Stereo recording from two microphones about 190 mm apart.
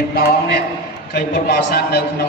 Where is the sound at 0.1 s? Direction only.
55° left (ahead or behind).